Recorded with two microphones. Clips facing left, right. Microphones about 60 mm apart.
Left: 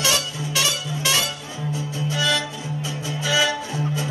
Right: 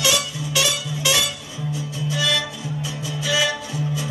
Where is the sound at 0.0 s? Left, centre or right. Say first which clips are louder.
Right 1 dB; left.